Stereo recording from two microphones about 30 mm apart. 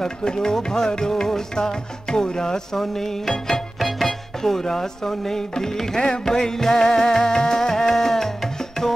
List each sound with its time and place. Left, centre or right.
0.0 s music: left
3.5 s speech: centre